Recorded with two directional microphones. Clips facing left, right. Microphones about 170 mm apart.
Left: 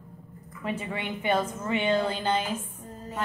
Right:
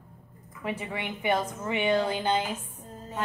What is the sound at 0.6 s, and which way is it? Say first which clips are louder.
A woman's voice: left 1 dB; 15° right (ahead or behind).